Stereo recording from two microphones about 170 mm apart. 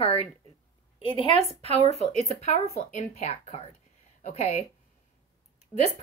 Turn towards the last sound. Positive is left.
turn(degrees=25)  # may be behind; listen again after turning